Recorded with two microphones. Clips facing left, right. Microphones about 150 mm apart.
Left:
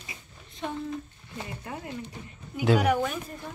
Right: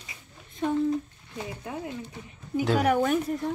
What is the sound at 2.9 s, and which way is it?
Speech, 50° right (ahead or behind).